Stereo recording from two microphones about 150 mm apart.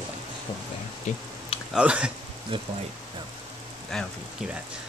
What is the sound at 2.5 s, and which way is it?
Speech, 35° right (ahead or behind).